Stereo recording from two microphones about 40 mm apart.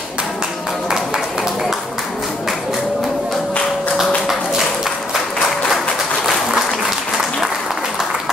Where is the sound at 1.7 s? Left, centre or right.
Centre.